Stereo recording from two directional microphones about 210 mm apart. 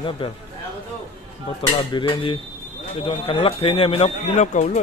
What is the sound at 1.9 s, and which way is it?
Speech, 25° left (ahead or behind).